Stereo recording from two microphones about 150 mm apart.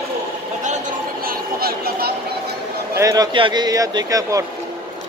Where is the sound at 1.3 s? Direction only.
85° right.